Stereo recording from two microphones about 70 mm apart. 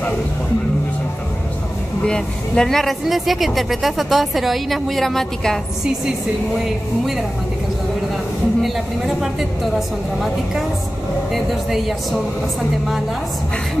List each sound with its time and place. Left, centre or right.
2.0 s speech: centre
6.6 s speech: centre
8.6 s speech: centre